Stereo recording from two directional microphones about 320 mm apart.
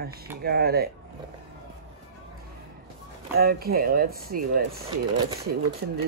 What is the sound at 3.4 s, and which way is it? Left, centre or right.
Speech, right.